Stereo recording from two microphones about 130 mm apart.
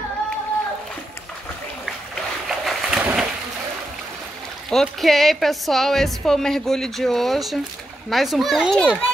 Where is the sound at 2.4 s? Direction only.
5° right (ahead or behind).